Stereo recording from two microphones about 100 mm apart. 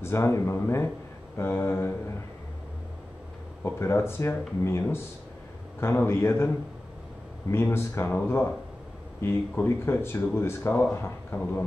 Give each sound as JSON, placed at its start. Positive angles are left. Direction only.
{"t": 0.0, "sound": "speech", "side_deg": 25}
{"t": 3.6, "sound": "speech", "side_deg": 25}
{"t": 7.5, "sound": "speech", "side_deg": 25}